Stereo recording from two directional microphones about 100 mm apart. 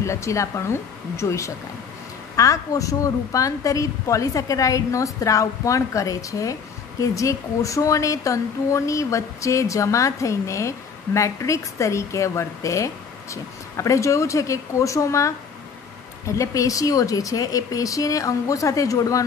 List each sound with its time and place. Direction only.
0.0 s a woman's voice: 30° left (ahead or behind)